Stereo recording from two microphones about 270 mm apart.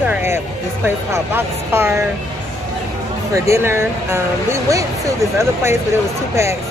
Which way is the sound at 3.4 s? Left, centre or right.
Centre.